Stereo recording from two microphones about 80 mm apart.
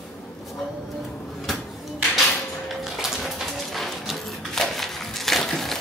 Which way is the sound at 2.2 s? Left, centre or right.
Centre.